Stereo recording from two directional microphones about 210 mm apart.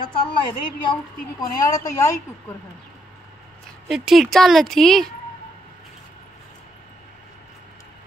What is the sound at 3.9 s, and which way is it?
Speech, centre (ahead or behind).